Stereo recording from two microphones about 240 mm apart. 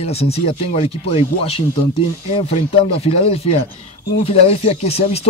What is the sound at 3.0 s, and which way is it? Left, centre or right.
Speech, left.